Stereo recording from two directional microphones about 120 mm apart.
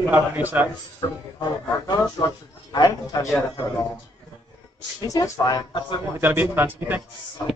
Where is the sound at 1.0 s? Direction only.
40° left (ahead or behind).